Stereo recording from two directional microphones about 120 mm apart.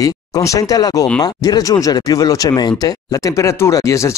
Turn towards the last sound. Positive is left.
turn(degrees=25)  # may be behind; listen again after turning